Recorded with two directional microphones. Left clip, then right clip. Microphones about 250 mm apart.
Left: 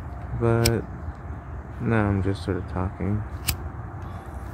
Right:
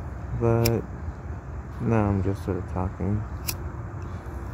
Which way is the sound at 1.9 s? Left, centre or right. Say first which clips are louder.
Left 1 dB; centre.